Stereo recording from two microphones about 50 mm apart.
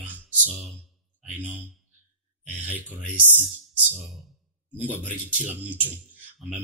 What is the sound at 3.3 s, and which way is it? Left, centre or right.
Speech, right.